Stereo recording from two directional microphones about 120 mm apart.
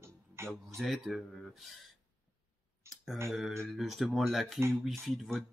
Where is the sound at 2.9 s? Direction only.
Centre (ahead or behind).